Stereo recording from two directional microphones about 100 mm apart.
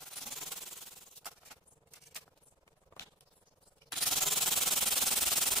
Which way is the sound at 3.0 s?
25° left (ahead or behind).